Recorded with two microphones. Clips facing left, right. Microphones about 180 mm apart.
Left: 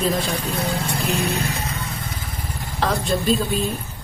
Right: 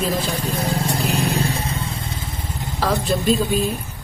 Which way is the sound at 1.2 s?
35° right (ahead or behind).